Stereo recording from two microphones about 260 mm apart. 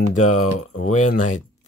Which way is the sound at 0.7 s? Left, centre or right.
Left.